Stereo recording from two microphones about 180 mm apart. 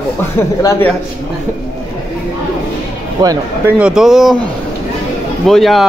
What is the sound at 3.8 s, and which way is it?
Speech, 5° right (ahead or behind).